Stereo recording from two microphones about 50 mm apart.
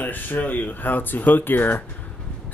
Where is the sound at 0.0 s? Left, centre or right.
Left.